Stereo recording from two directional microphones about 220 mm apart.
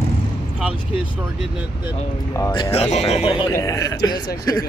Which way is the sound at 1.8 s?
15° left (ahead or behind).